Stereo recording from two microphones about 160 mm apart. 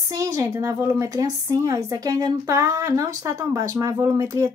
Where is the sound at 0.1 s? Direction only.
20° right (ahead or behind).